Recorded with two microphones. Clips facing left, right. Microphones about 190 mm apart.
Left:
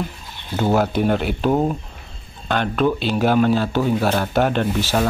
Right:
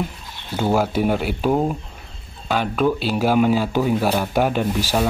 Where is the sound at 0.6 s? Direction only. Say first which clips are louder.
Left 1 dB; 5° right (ahead or behind).